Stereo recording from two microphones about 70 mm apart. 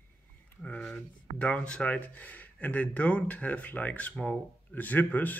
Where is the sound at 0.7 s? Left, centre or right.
Centre.